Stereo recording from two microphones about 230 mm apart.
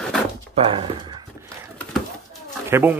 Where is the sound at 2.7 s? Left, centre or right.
Centre.